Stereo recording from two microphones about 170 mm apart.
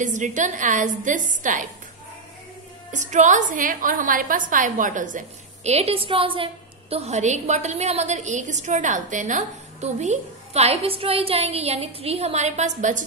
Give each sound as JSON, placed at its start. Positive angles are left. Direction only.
{"t": 0.0, "sound": "a woman's voice", "side_deg": -45}
{"t": 2.9, "sound": "a woman's voice", "side_deg": -45}